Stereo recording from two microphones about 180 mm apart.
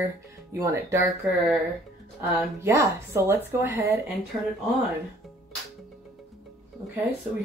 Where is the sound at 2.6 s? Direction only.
15° right (ahead or behind).